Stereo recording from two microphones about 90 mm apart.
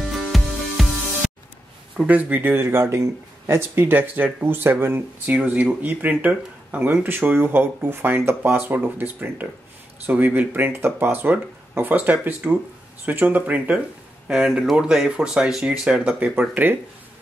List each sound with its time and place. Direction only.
0.0 s music: centre (ahead or behind)
2.0 s speech: 15° right (ahead or behind)